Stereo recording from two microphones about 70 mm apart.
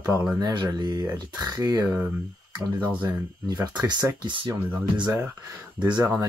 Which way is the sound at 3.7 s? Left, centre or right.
Right.